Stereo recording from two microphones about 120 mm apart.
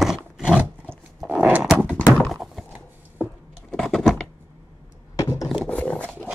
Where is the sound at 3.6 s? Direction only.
5° left (ahead or behind).